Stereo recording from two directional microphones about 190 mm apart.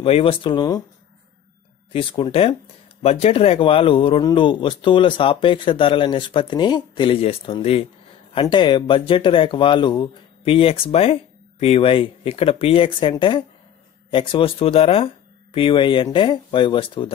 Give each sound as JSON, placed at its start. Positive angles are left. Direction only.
{"t": 0.0, "sound": "speech", "side_deg": 30}
{"t": 1.9, "sound": "speech", "side_deg": 30}